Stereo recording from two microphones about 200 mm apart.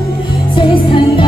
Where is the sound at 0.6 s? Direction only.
25° left (ahead or behind).